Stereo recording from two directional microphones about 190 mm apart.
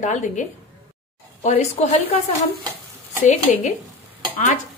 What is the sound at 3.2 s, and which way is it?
A woman's voice, 40° left (ahead or behind).